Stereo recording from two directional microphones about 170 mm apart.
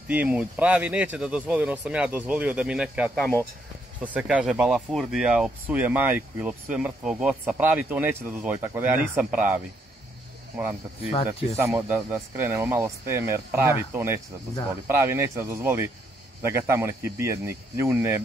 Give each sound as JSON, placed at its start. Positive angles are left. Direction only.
{"t": 0.1, "sound": "speech", "side_deg": -10}
{"t": 3.2, "sound": "speech", "side_deg": 5}
{"t": 4.0, "sound": "speech", "side_deg": -10}
{"t": 11.5, "sound": "speech", "side_deg": -15}